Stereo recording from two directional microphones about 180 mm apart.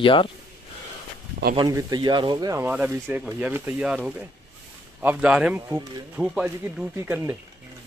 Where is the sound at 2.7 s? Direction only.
10° right (ahead or behind).